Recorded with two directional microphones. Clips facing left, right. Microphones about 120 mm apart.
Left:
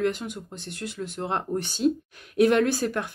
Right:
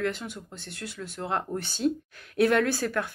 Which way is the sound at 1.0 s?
30° left (ahead or behind).